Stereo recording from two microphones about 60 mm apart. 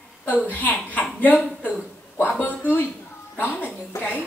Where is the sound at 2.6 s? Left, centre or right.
Left.